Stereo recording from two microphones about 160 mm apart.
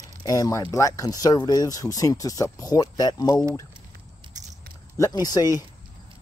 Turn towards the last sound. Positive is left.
turn(degrees=25)  # may be behind; listen again after turning